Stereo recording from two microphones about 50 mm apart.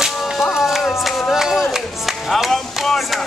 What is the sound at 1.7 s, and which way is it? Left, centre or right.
Music, centre.